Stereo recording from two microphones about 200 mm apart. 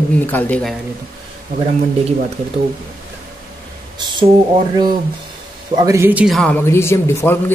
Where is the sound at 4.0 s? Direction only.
20° right (ahead or behind).